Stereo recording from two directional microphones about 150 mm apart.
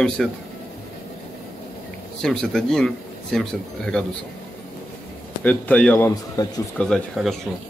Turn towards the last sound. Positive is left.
turn(degrees=5)  # may be behind; listen again after turning